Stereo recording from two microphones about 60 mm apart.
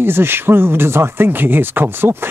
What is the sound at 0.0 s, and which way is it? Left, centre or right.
Speech, right.